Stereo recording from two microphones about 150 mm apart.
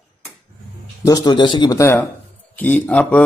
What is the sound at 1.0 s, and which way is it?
Speech, 25° left (ahead or behind).